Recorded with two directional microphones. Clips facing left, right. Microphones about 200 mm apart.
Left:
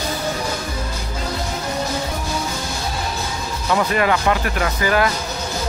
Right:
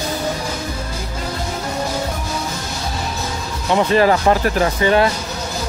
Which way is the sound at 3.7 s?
25° right (ahead or behind).